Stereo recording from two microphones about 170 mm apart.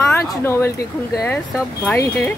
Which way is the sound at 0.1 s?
15° left (ahead or behind).